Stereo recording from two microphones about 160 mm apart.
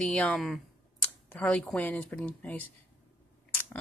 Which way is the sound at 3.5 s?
10° left (ahead or behind).